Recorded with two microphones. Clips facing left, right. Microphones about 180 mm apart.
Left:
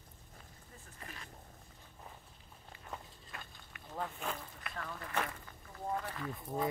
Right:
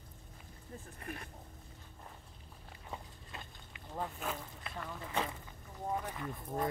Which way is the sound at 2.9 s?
20° right (ahead or behind).